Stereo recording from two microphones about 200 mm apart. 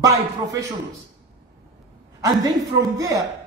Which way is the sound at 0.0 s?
15° right (ahead or behind).